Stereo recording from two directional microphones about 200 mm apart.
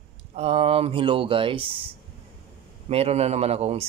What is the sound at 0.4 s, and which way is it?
Speech, 30° right (ahead or behind).